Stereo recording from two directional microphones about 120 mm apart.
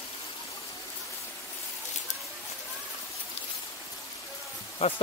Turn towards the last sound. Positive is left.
turn(degrees=55)  # may be behind; listen again after turning